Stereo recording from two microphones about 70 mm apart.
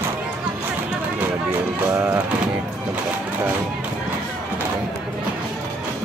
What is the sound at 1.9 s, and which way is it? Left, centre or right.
Music, centre.